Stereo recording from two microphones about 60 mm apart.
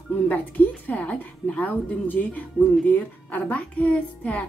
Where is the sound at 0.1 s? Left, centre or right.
Left.